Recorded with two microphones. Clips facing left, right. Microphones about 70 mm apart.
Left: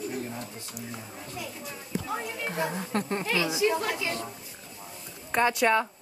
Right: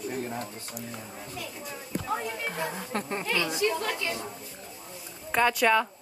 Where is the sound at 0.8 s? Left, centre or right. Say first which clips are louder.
Even; centre.